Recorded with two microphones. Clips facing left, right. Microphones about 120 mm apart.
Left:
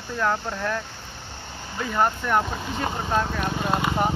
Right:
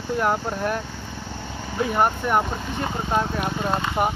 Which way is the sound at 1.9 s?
10° right (ahead or behind).